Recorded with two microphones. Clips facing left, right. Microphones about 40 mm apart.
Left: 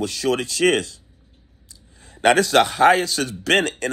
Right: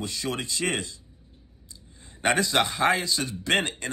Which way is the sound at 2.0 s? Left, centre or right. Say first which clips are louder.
Left 8 dB; left.